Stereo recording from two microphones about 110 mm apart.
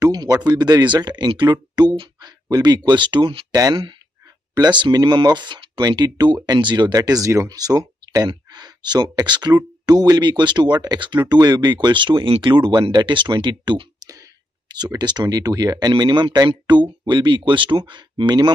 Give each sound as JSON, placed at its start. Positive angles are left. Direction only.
{"t": 0.0, "sound": "speech", "side_deg": -35}
{"t": 4.6, "sound": "speech", "side_deg": -45}
{"t": 14.0, "sound": "speech", "side_deg": -30}